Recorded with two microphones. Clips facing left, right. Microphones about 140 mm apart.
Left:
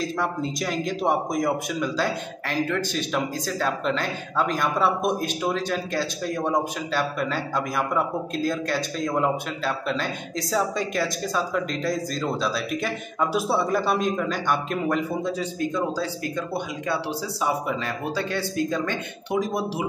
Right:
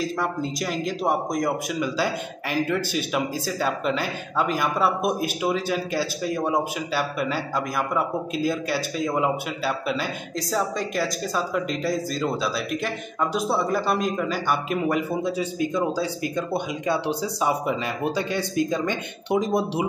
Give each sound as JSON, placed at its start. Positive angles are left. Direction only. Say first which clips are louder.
{"t": 0.0, "sound": "a man's voice", "louder": "even", "side_deg": 0}